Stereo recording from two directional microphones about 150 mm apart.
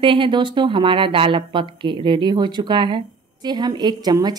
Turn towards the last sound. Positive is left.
turn(degrees=-25)  # may be behind; listen again after turning